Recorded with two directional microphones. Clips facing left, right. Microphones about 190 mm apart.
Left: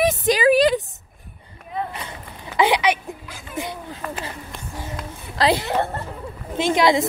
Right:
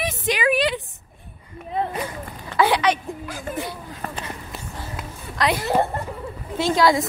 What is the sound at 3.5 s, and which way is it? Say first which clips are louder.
Speech: right 1 dB; 45° right (ahead or behind).